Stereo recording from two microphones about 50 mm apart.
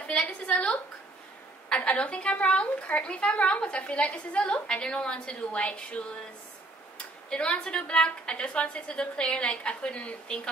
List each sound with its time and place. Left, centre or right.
0.0 s a woman's voice: left
7.2 s a woman's voice: left